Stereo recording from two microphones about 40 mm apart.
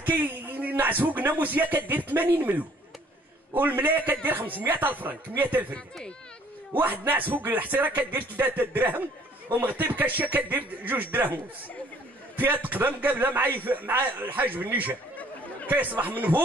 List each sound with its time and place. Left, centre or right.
0.0 s a sound: right
1.4 s a man's voice: right
3.5 s speech: right
6.8 s a man's voice: right
12.6 s a man's voice: right